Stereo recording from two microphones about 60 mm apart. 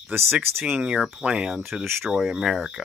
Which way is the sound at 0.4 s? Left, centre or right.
Right.